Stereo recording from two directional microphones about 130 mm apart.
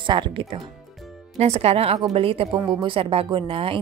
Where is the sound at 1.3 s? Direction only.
55° right (ahead or behind).